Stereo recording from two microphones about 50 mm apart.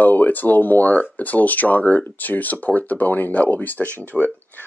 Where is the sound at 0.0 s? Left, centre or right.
Left.